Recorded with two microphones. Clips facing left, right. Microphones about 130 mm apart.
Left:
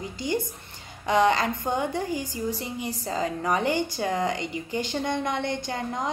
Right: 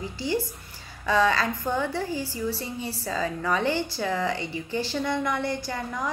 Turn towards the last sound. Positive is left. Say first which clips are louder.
# left 1 dB
turn(degrees=20)  # may be behind; listen again after turning